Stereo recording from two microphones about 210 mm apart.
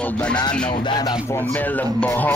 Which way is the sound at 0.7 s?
20° left (ahead or behind).